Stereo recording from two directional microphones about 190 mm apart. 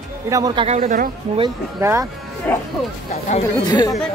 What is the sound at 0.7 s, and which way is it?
Speech, 40° right (ahead or behind).